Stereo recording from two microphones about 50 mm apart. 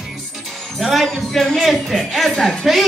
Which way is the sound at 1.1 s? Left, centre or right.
Centre.